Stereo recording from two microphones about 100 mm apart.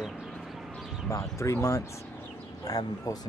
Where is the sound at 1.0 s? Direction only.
30° left (ahead or behind).